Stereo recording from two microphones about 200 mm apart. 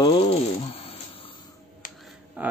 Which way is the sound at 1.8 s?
40° left (ahead or behind).